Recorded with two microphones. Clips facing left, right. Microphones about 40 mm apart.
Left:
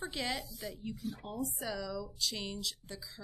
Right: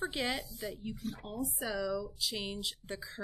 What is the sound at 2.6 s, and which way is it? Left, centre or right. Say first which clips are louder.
Speech: right 2 dB; right.